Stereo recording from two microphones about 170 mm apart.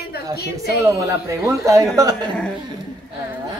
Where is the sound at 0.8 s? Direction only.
15° right (ahead or behind).